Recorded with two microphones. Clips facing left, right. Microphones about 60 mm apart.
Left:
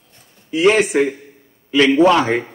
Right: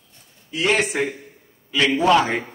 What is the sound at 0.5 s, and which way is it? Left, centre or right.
Speech, centre.